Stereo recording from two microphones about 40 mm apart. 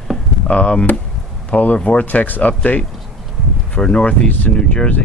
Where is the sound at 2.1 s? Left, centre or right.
Left.